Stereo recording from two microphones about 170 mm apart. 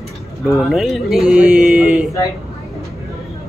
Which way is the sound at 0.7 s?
Centre (ahead or behind).